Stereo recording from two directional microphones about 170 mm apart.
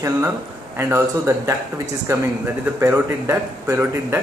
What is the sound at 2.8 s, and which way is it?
A man's voice, 15° right (ahead or behind).